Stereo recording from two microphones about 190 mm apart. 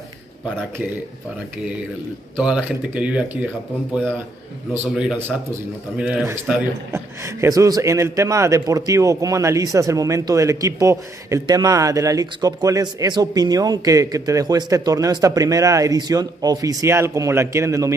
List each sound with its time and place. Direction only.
2.3 s a man's voice: 5° right (ahead or behind)
4.9 s a man's voice: 5° right (ahead or behind)